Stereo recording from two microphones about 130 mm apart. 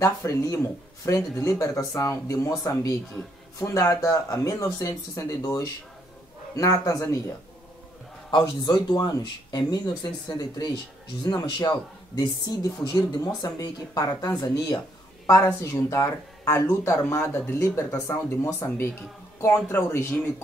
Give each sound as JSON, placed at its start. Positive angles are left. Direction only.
{"t": 0.0, "sound": "speech", "side_deg": 25}
{"t": 8.3, "sound": "speech", "side_deg": 30}
{"t": 13.0, "sound": "speech", "side_deg": 30}